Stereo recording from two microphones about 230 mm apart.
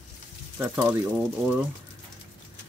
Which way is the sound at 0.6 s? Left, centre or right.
Centre.